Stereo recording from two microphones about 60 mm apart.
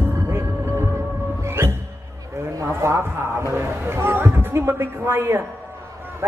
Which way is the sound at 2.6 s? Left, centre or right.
Right.